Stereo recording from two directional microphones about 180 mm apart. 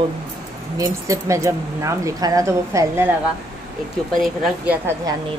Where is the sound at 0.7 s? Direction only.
20° right (ahead or behind).